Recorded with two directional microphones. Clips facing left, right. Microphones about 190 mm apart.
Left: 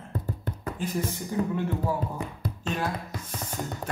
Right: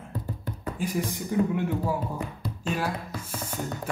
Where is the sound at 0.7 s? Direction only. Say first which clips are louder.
Right 2 dB; 10° right (ahead or behind).